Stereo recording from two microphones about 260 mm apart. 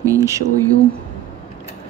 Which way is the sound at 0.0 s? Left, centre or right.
Centre.